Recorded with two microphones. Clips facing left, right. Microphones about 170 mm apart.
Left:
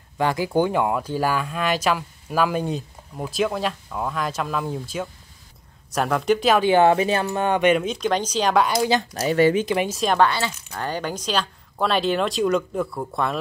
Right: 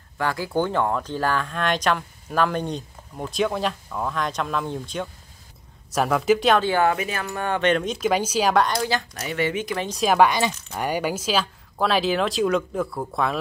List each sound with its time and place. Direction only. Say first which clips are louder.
0.2 s speech: left 3 dB; 20° left (ahead or behind); by 6.6 s centre (ahead or behind)
6.6 s speech: left 5 dB; 20° left (ahead or behind); by 8.6 s 5° right (ahead or behind)
9.1 s speech: left 7 dB; 35° left (ahead or behind)
9.9 s speech: right 4 dB; 5° right (ahead or behind)